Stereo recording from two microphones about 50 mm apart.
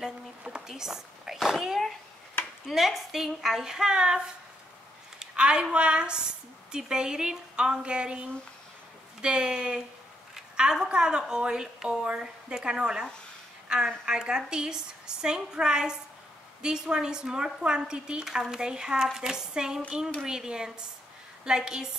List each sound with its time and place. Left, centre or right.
0.4 s a sound: centre
2.6 s a woman's voice: centre
5.2 s a woman's voice: centre
18.2 s a woman's voice: centre